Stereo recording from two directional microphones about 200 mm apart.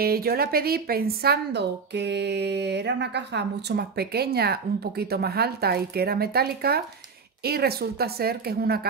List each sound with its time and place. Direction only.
0.0 s speech: 50° right (ahead or behind)